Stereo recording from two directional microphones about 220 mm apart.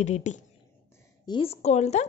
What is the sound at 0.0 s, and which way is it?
A woman's voice, 30° left (ahead or behind).